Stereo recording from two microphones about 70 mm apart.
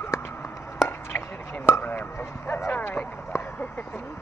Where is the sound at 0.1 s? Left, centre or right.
Left.